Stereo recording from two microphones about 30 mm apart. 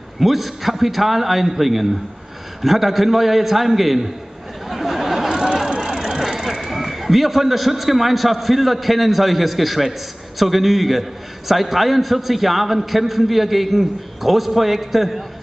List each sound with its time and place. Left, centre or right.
0.2 s a man's voice: centre
4.6 s a sound: centre
5.8 s a man's voice: centre